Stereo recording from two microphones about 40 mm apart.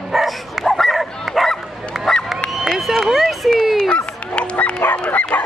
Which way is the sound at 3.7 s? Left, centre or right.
Left.